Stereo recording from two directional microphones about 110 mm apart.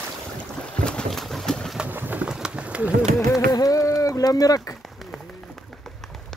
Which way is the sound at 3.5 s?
30° left (ahead or behind).